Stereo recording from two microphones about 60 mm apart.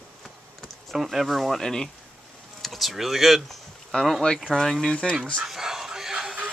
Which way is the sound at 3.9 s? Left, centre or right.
Centre.